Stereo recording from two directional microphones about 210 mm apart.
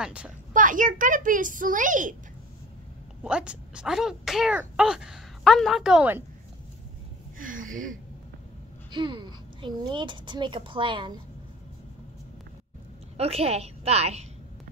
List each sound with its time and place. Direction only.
0.0 s speech: 5° right (ahead or behind)
0.5 s a child's voice: 40° right (ahead or behind)
3.3 s speech: 5° right (ahead or behind)
7.3 s gasp: 40° right (ahead or behind)
8.9 s speech: 20° right (ahead or behind)
13.2 s speech: 30° right (ahead or behind)